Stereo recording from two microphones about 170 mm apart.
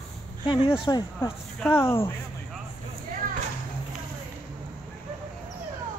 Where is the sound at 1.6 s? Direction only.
15° left (ahead or behind).